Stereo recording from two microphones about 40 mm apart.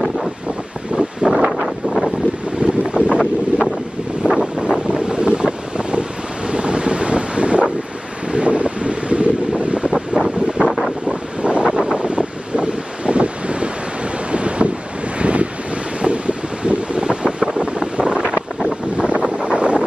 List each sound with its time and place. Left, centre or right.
1.2 s wind: centre
2.6 s boat: right
3.2 s wind noise: centre
4.4 s wind noise: right
9.9 s wind noise: centre